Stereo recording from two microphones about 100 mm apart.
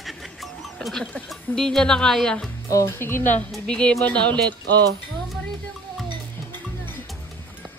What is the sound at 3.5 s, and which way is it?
Speech, 10° left (ahead or behind).